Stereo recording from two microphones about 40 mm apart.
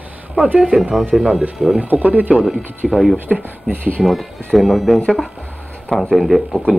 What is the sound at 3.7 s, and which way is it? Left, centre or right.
Speech, right.